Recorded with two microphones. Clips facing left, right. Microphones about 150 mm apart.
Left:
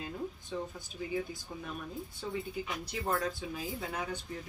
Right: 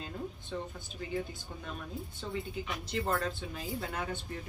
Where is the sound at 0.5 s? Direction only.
5° left (ahead or behind).